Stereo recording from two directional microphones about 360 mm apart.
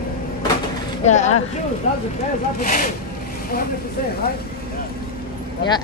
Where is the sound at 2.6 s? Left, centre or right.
Left.